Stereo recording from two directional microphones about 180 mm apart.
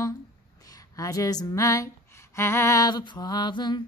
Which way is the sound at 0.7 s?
20° left (ahead or behind).